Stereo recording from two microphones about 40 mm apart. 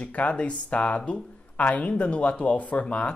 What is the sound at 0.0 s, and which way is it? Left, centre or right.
Speech, left.